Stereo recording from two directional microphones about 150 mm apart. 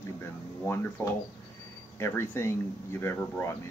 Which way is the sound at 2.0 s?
15° left (ahead or behind).